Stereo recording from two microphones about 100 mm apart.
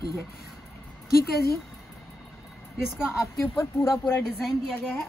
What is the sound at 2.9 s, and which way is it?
Speech, centre (ahead or behind).